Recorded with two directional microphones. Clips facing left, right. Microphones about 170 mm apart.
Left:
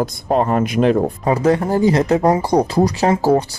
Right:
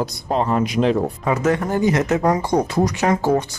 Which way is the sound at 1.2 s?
35° left (ahead or behind).